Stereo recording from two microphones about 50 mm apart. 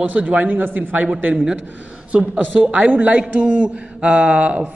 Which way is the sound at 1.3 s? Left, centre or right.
Centre.